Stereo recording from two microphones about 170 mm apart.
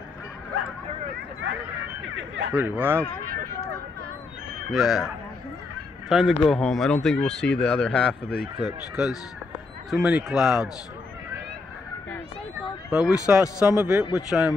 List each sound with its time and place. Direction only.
2.1 s speech: 90° right
2.5 s speech: 10° right (ahead or behind)
4.6 s speech: centre (ahead or behind)
12.9 s speech: 5° right (ahead or behind)